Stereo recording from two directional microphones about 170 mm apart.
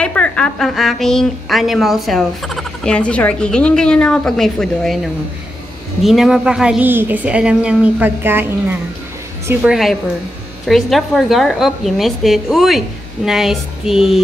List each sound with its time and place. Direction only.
0.0 s a woman's voice: 5° left (ahead or behind)